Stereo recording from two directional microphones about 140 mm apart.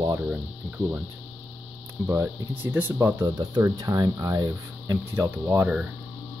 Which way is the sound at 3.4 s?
30° right (ahead or behind).